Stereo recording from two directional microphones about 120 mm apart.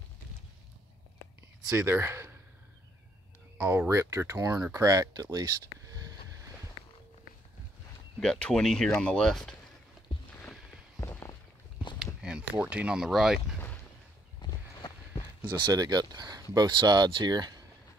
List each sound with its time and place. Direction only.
1.8 s speech: 20° right (ahead or behind)
3.6 s speech: 20° right (ahead or behind)
4.7 s a sound: 25° right (ahead or behind)
8.2 s speech: 10° left (ahead or behind)
11.0 s walk: 25° left (ahead or behind)
12.2 s speech: 10° right (ahead or behind)
14.4 s a sound: 35° left (ahead or behind)
15.6 s speech: 30° right (ahead or behind)